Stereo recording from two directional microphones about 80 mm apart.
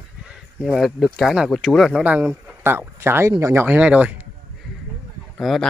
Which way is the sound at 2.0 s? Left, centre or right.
Centre.